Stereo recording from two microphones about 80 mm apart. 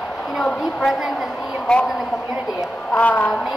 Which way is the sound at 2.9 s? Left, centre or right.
Centre.